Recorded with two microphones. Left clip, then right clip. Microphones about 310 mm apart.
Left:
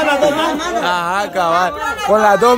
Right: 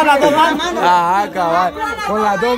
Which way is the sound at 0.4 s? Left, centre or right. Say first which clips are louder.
Right 3 dB; centre.